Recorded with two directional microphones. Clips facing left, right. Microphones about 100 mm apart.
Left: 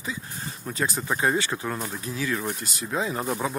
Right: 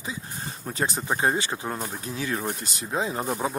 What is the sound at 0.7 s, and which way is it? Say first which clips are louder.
Speech: even; 30° right (ahead or behind).